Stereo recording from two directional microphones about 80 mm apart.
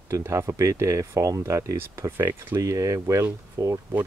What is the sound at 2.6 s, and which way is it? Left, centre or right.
Speech, right.